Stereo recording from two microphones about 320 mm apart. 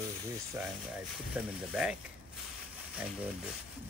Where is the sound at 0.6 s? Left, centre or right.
Centre.